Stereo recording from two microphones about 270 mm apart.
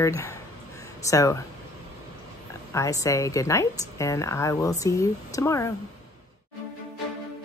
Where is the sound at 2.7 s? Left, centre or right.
Centre.